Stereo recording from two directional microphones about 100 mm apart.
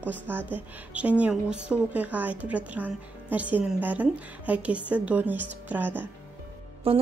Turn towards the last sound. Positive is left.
turn(degrees=-80)